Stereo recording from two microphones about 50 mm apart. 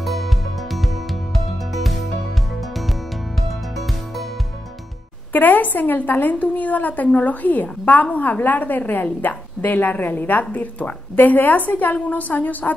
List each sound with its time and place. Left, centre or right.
0.0 s music: centre
1.3 s music: centre
5.3 s a woman's voice: left